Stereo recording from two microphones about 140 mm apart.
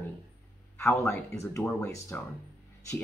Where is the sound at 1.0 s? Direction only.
20° left (ahead or behind).